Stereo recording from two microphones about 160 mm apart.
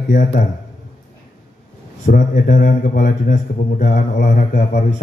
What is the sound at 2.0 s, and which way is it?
A man's voice, 55° left (ahead or behind).